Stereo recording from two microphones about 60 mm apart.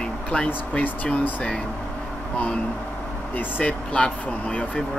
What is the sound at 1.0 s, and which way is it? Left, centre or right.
Speech, left.